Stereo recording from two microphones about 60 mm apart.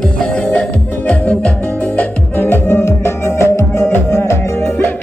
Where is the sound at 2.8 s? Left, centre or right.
Left.